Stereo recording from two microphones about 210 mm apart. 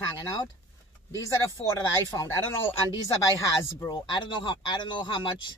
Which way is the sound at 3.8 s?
20° left (ahead or behind).